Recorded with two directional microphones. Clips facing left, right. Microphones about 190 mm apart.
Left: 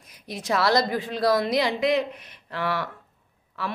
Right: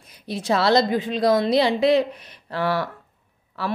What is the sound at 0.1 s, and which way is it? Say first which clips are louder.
A woman's voice: right 4 dB; 30° right (ahead or behind).